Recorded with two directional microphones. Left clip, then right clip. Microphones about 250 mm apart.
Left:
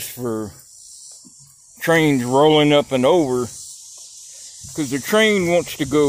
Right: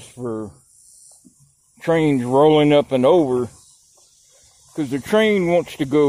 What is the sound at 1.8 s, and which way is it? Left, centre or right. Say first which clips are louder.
Speech: left 2 dB; centre.